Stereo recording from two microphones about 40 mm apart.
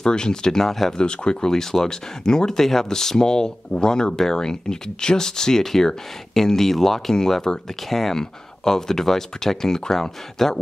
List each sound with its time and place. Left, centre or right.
0.0 s speech: centre
0.9 s speech: left